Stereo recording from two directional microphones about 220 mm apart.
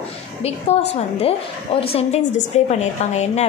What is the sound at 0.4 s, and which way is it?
A woman's voice, 30° left (ahead or behind).